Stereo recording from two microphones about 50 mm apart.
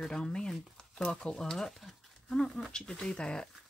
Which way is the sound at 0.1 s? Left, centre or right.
Centre.